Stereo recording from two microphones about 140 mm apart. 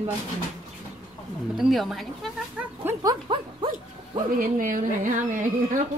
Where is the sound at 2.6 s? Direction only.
10° right (ahead or behind).